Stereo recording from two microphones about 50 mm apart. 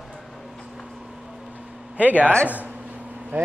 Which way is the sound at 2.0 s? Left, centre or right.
Right.